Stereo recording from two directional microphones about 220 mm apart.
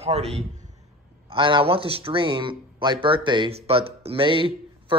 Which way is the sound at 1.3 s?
20° right (ahead or behind).